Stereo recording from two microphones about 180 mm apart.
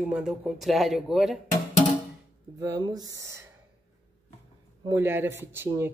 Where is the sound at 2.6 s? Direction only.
20° right (ahead or behind).